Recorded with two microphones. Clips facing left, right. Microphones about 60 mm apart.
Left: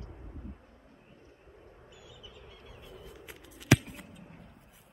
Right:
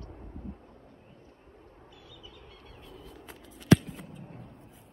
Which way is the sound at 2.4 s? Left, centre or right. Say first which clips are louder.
Even; centre.